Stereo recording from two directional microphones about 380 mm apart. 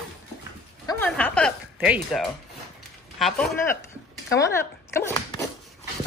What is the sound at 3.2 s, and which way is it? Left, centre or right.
Speech, centre.